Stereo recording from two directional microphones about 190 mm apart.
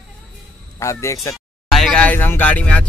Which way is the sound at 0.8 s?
15° left (ahead or behind).